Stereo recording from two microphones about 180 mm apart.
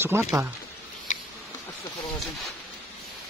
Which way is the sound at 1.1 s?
40° left (ahead or behind).